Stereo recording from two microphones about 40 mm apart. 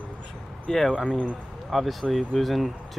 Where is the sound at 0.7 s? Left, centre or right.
Centre.